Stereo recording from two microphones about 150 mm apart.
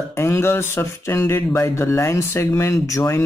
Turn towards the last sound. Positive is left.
turn(degrees=20)  # may be behind; listen again after turning